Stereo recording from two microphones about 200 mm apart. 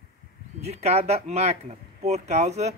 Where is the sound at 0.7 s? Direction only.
30° right (ahead or behind).